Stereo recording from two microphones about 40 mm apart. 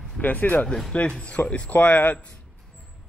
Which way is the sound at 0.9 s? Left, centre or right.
Left.